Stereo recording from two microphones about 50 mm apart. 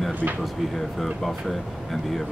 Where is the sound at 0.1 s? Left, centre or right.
Right.